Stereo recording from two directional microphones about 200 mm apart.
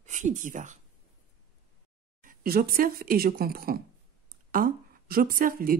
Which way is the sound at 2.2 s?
50° right (ahead or behind).